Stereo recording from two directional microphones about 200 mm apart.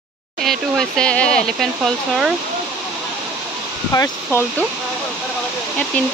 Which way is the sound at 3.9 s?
20° left (ahead or behind).